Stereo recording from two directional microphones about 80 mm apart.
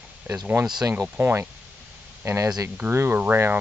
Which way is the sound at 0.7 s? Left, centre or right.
Right.